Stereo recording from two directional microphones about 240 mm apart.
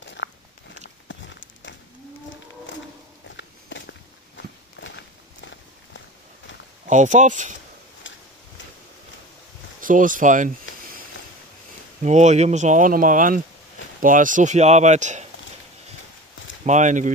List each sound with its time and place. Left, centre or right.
0.0 s a sound: left
3.3 s a sound: left
4.7 s walk: left
6.9 s speech: right
9.8 s speech: right
12.0 s speech: right
16.6 s speech: right